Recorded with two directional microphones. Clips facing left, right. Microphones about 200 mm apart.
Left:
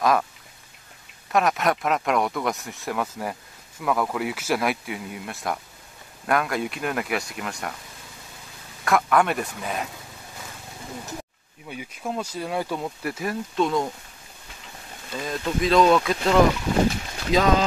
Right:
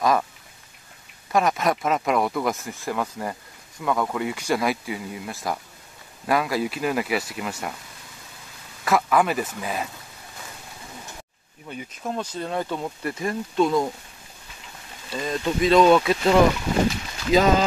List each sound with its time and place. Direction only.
0.0 s speech: centre (ahead or behind)
1.3 s speech: centre (ahead or behind)
8.8 s speech: centre (ahead or behind)
11.6 s speech: 5° left (ahead or behind)
15.1 s speech: centre (ahead or behind)